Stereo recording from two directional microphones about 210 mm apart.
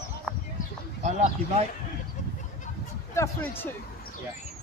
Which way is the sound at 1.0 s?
35° right (ahead or behind).